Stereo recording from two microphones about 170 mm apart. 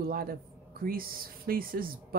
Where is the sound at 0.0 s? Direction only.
60° right (ahead or behind).